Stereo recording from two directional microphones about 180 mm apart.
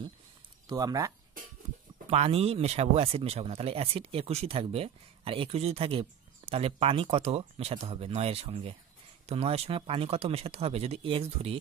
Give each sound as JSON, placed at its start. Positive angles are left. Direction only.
{"t": 0.7, "sound": "speech", "side_deg": -20}
{"t": 2.0, "sound": "speech", "side_deg": -35}